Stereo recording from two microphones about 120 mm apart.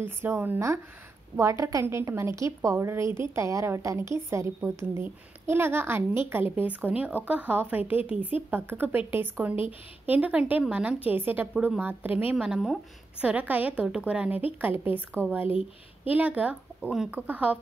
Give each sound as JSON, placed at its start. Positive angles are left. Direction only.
{"t": 0.0, "sound": "a woman's voice", "side_deg": -20}
{"t": 12.4, "sound": "a woman's voice", "side_deg": -5}
{"t": 15.4, "sound": "speech", "side_deg": 50}
{"t": 16.1, "sound": "a woman's voice", "side_deg": -10}